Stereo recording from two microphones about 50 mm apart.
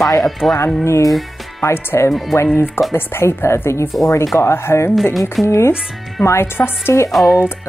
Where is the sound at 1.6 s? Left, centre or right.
Left.